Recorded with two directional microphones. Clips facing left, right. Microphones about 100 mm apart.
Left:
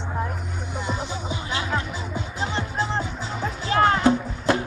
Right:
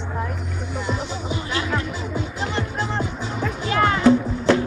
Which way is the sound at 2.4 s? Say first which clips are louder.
Left 1 dB; 15° left (ahead or behind).